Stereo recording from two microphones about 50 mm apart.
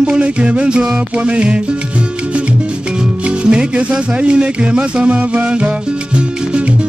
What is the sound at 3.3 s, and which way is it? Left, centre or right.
Music, right.